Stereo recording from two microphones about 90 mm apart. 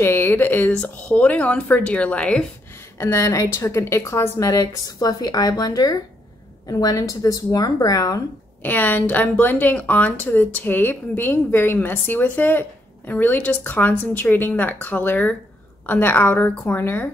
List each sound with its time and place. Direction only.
0.0 s a sound: 25° left (ahead or behind)
0.8 s speech: 15° left (ahead or behind)
3.0 s a woman's voice: 35° left (ahead or behind)
8.6 s a woman's voice: 20° left (ahead or behind)